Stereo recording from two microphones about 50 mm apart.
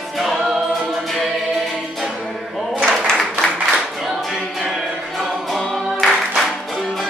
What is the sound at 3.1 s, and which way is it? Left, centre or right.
Applause, centre.